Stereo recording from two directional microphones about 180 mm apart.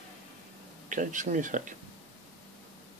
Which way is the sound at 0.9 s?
45° right (ahead or behind).